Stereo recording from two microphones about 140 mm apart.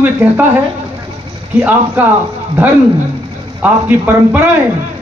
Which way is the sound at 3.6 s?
15° right (ahead or behind).